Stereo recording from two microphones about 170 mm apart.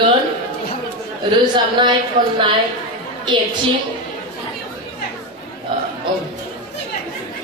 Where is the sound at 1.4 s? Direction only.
25° right (ahead or behind).